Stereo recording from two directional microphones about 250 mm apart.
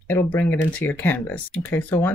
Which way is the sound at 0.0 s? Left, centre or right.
Centre.